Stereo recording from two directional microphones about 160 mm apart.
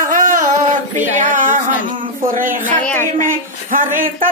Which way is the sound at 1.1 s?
55° right (ahead or behind).